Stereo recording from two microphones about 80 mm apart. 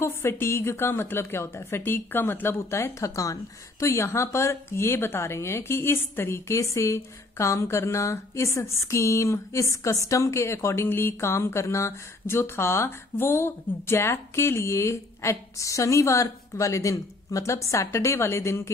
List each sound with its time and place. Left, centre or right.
0.0 s a woman's voice: left